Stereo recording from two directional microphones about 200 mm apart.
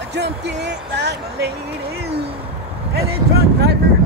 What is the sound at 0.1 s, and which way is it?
Speech, 60° right (ahead or behind).